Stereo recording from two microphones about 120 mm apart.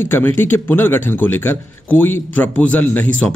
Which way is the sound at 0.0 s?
15° left (ahead or behind).